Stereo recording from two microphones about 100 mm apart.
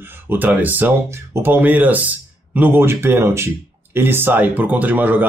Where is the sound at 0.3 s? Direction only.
20° right (ahead or behind).